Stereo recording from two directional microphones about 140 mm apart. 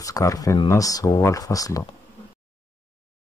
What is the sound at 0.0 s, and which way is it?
Speech, 25° left (ahead or behind).